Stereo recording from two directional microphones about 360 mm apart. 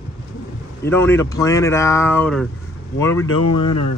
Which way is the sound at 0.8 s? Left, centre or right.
Centre.